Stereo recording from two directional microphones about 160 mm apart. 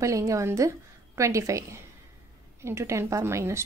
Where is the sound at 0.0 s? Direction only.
20° right (ahead or behind).